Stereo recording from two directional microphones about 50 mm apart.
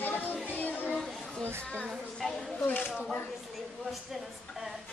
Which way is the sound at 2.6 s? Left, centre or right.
Left.